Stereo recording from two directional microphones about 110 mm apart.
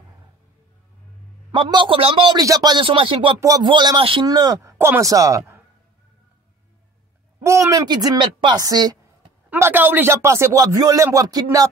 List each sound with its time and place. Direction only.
1.5 s a man's voice: 45° right (ahead or behind)
2.3 s speech: 35° right (ahead or behind)
2.8 s a man's voice: 50° right (ahead or behind)
3.3 s speech: 30° right (ahead or behind)
3.6 s a man's voice: 45° right (ahead or behind)
4.3 s speech: 35° right (ahead or behind)
4.7 s speech: 20° right (ahead or behind)
7.4 s speech: 25° right (ahead or behind)
7.8 s speech: 40° right (ahead or behind)
9.5 s speech: 15° right (ahead or behind); by 11.4 s 35° right (ahead or behind)